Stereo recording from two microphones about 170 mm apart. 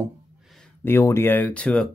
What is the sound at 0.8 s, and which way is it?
Speech, 15° left (ahead or behind).